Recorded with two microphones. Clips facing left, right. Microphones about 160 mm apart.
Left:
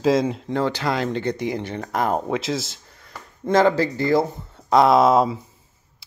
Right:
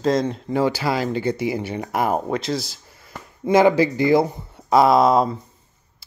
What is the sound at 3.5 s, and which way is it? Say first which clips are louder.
Speech: right 2 dB; 10° right (ahead or behind).